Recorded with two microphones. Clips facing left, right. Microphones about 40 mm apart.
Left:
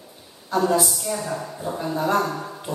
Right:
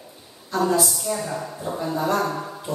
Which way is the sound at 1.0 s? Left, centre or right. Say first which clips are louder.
Even; centre.